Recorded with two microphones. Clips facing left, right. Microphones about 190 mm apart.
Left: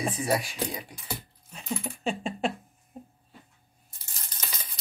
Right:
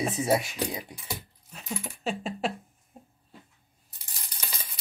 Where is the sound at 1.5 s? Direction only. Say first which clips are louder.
Left 3 dB; centre (ahead or behind).